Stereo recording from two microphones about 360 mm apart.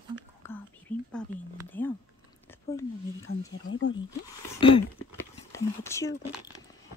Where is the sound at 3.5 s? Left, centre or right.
Left.